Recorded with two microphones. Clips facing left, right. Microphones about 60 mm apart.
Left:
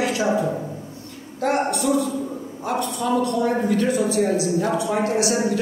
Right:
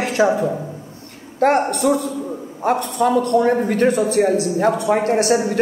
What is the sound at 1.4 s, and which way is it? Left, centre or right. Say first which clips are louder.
Speech: right 5 dB; right.